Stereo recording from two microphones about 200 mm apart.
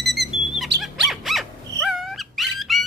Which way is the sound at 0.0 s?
Centre (ahead or behind).